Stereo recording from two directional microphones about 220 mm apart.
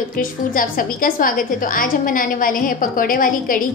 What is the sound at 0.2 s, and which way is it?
A woman's voice, 40° left (ahead or behind).